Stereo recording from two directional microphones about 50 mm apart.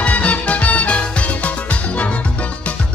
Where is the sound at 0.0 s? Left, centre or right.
Left.